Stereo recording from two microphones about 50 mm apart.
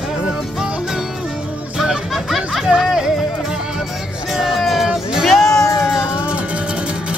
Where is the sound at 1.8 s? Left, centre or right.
Centre.